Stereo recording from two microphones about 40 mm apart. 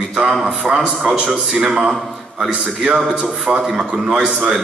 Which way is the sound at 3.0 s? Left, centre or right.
Centre.